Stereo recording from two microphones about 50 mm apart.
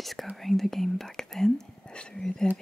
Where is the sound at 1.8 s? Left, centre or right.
Centre.